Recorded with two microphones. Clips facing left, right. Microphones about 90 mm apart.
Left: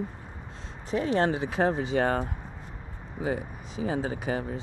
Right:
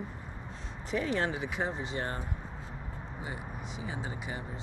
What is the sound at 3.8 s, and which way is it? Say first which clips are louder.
Speech: left 12 dB; 45° left (ahead or behind).